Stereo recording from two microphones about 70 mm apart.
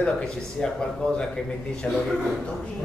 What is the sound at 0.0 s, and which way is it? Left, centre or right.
A man's voice, centre.